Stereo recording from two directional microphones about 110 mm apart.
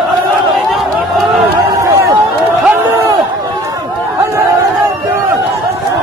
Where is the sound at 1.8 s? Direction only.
30° right (ahead or behind).